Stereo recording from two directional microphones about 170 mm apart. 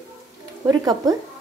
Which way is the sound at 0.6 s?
20° right (ahead or behind).